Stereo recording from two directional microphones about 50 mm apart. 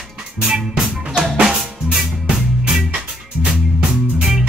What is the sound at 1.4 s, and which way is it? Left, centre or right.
Drum kit, centre.